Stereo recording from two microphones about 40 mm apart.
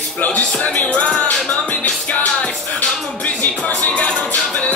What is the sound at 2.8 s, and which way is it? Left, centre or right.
Music, centre.